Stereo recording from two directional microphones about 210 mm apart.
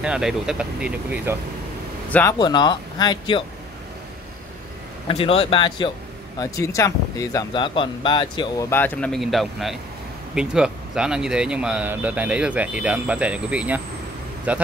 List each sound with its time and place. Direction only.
0.0 s speech: 5° right (ahead or behind)
2.0 s speech: 5° left (ahead or behind)
2.3 s speech: 20° left (ahead or behind)
5.0 s a man's voice: 25° left (ahead or behind); by 14.6 s 5° right (ahead or behind)